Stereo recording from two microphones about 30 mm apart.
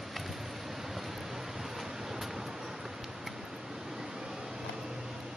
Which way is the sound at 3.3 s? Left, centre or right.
Centre.